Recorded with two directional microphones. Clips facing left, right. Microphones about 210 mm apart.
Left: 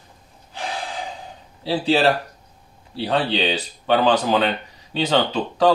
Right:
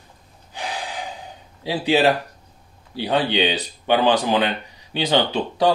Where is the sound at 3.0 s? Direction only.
15° right (ahead or behind).